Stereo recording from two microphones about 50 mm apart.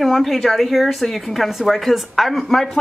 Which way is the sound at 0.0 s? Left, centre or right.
Centre.